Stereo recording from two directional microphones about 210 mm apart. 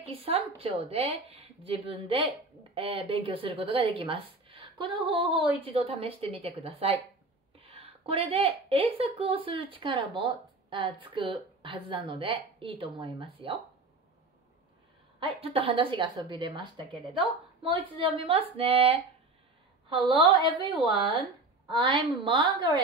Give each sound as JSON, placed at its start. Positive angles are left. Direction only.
{"t": 0.0, "sound": "a woman's voice", "side_deg": -25}
{"t": 15.1, "sound": "speech", "side_deg": -25}
{"t": 20.1, "sound": "speech", "side_deg": -25}